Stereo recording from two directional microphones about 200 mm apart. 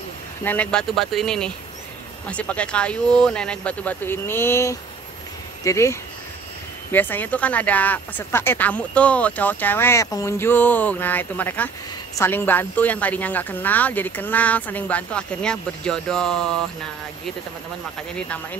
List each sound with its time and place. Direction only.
0.4 s speech: 10° left (ahead or behind)